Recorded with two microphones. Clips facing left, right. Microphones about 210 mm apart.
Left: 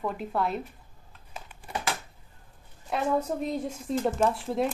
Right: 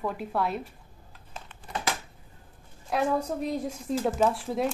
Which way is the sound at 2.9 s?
Centre (ahead or behind).